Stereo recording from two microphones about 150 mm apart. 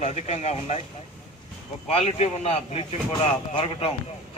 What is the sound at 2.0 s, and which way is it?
Speech, 45° left (ahead or behind).